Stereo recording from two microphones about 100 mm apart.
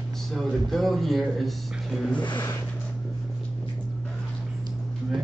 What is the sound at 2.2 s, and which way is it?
Speech, 50° left (ahead or behind).